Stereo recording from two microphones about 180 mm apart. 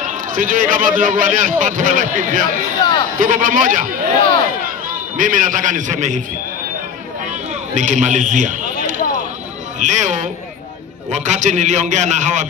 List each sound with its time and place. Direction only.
0.0 s a man's voice: 50° right (ahead or behind)
2.8 s a man's voice: 25° left (ahead or behind)
3.2 s a man's voice: 50° right (ahead or behind)
5.1 s a man's voice: 50° right (ahead or behind)
7.7 s a man's voice: 45° right (ahead or behind)
9.8 s a sound: 40° right (ahead or behind)
11.1 s a man's voice: 40° right (ahead or behind)